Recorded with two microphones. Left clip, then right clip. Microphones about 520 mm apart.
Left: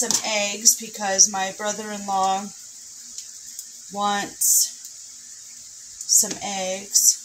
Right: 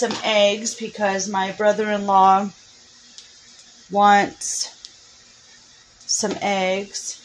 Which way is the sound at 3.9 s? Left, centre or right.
Left.